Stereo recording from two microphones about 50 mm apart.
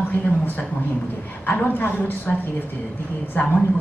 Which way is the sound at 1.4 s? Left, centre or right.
Left.